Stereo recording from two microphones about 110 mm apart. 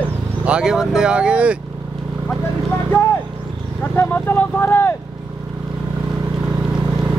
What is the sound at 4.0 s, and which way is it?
Speech, 20° left (ahead or behind).